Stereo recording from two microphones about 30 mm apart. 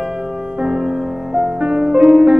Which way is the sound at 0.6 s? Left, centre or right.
Centre.